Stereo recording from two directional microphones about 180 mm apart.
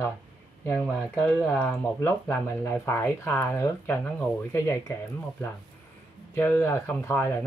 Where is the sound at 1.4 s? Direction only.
10° left (ahead or behind).